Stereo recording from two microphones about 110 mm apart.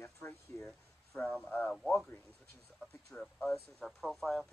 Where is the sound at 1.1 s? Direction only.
10° left (ahead or behind).